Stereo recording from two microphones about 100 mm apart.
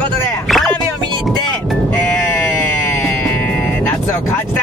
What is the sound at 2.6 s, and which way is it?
Music, 25° left (ahead or behind).